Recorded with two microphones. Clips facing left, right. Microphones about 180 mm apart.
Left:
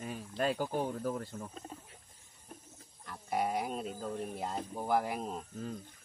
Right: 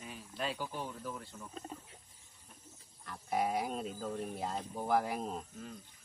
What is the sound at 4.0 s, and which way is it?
Speech, centre (ahead or behind).